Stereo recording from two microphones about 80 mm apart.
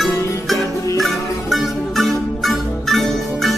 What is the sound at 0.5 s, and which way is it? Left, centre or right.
Music, left.